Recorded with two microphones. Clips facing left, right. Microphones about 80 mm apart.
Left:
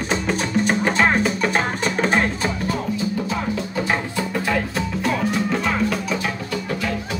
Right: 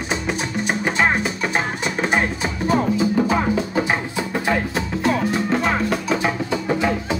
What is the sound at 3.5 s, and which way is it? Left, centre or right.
Music, centre.